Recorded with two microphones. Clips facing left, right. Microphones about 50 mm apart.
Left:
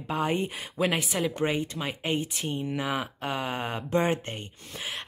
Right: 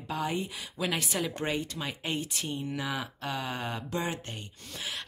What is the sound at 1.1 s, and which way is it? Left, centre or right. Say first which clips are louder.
Speech: left 4 dB; centre.